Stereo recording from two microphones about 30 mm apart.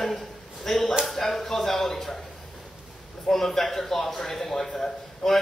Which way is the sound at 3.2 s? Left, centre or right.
Centre.